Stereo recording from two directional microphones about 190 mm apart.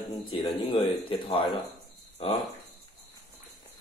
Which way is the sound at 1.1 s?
30° left (ahead or behind).